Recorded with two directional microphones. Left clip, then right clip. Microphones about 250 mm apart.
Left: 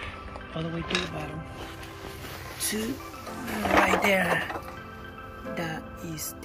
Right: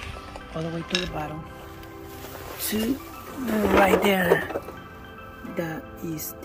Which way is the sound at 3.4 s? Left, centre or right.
Right.